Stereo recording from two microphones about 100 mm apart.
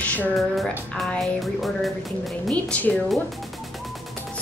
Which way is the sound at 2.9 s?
10° left (ahead or behind).